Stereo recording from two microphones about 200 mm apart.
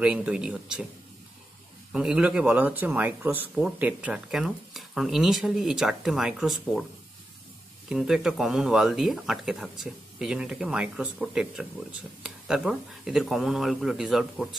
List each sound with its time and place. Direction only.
0.0 s speech: 5° right (ahead or behind)
1.9 s speech: 5° right (ahead or behind)
7.9 s speech: centre (ahead or behind)